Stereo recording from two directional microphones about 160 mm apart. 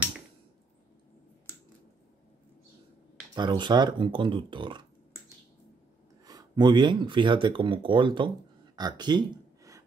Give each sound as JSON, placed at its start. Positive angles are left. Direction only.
{"t": 3.3, "sound": "speech", "side_deg": -30}
{"t": 6.2, "sound": "speech", "side_deg": -25}
{"t": 8.7, "sound": "a sound", "side_deg": -25}